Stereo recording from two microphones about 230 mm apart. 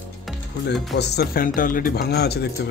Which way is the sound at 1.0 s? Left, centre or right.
Left.